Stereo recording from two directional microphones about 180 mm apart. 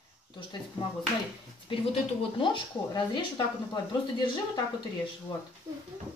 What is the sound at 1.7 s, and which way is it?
Speech, 30° left (ahead or behind).